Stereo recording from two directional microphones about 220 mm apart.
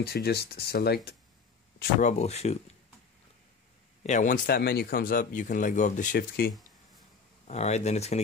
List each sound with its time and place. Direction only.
0.0 s speech: 45° left (ahead or behind)
1.8 s speech: 35° left (ahead or behind)
4.0 s speech: 35° left (ahead or behind)
7.4 s speech: 30° left (ahead or behind)